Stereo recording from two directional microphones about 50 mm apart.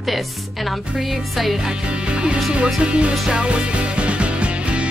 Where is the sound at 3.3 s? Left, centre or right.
Centre.